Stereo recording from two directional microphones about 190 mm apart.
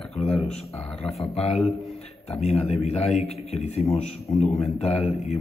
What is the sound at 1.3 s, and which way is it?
A man's voice, 30° left (ahead or behind).